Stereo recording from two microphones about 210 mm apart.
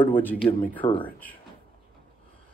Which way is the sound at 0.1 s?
10° left (ahead or behind).